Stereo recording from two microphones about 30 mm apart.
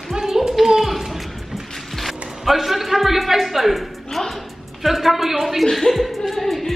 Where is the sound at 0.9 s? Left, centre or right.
Centre.